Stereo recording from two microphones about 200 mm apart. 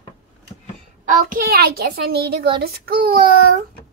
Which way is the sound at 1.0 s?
45° right (ahead or behind).